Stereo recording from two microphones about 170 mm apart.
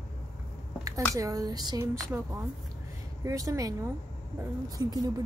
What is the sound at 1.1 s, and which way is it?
Speech, 20° right (ahead or behind).